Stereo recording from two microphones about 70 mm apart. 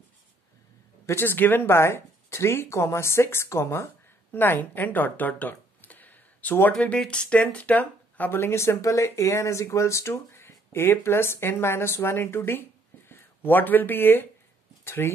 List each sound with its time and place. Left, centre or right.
1.0 s speech: left
4.3 s speech: left
6.7 s speech: centre
8.4 s speech: left